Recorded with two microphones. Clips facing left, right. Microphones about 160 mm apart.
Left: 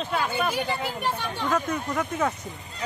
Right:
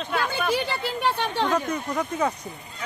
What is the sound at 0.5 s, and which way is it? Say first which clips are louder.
Speech: right 2 dB; 85° right.